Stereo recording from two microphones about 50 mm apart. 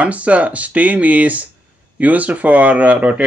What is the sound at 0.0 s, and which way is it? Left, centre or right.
Speech, right.